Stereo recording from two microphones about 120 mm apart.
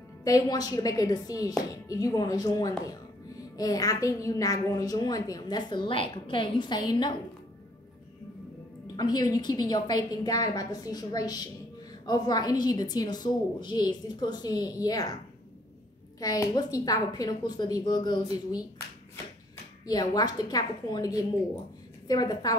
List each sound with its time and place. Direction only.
0.2 s a woman's voice: 30° left (ahead or behind)
8.9 s a woman's voice: 30° left (ahead or behind)
16.2 s a woman's voice: 30° left (ahead or behind)
19.9 s a woman's voice: 35° left (ahead or behind)